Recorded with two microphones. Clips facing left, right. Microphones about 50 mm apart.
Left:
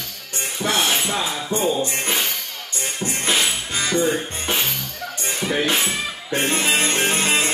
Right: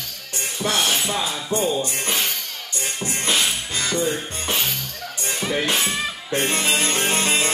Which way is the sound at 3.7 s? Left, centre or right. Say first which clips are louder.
Left 5 dB; centre.